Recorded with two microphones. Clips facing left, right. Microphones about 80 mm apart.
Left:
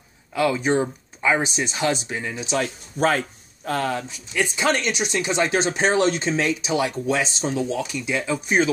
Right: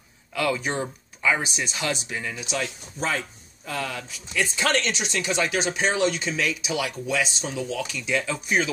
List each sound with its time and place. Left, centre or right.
0.3 s speech: left
3.0 s speech: left
4.1 s speech: left
7.8 s speech: centre